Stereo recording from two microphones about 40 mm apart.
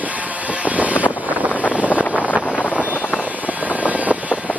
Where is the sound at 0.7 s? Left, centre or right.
Right.